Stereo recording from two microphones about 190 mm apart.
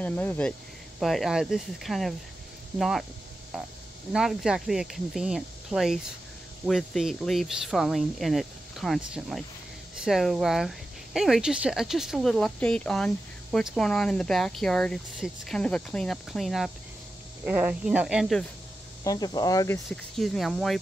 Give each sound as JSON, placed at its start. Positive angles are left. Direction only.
{"t": 0.0, "sound": "speech", "side_deg": 10}
{"t": 19.0, "sound": "speech", "side_deg": 20}
{"t": 20.2, "sound": "speech", "side_deg": 0}